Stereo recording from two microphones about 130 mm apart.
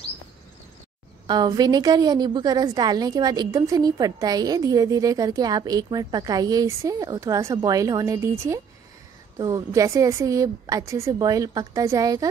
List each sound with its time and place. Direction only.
1.2 s a woman's voice: 35° right (ahead or behind)